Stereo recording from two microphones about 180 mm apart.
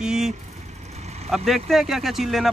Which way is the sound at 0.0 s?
5° right (ahead or behind).